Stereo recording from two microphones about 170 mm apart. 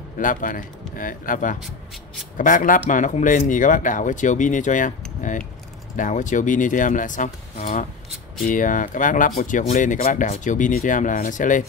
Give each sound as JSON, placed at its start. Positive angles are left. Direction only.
{"t": 0.2, "sound": "speech", "side_deg": 50}